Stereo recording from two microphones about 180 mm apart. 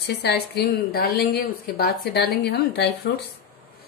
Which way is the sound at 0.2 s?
70° left (ahead or behind).